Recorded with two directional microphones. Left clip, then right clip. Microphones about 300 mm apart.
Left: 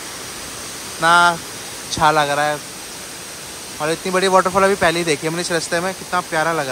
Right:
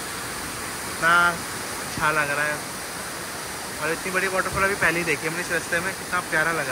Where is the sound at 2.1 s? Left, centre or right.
Centre.